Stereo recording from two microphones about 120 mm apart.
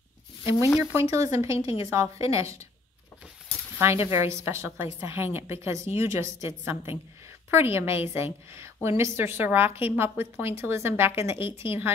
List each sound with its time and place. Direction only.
0.9 s a woman's voice: 25° right (ahead or behind)
3.7 s a woman's voice: 20° right (ahead or behind)